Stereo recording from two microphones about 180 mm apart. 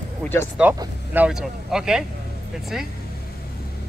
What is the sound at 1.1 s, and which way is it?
Speech, 5° right (ahead or behind).